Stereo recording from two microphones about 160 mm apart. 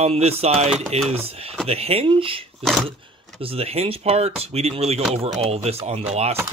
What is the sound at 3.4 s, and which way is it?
Speech, 35° right (ahead or behind).